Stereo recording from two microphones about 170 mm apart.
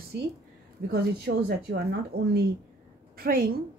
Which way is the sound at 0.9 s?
75° right (ahead or behind).